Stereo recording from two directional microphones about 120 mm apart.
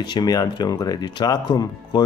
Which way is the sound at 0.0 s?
35° left (ahead or behind).